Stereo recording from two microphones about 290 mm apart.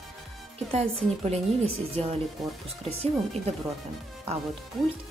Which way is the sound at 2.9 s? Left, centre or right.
Right.